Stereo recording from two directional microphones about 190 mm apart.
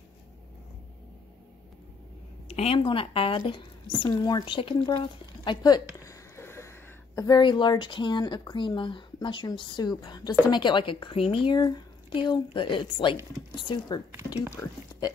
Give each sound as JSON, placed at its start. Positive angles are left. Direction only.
{"t": 2.4, "sound": "a woman's voice", "side_deg": 35}